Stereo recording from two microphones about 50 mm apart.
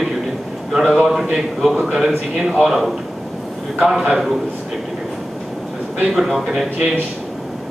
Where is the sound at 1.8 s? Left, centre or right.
Centre.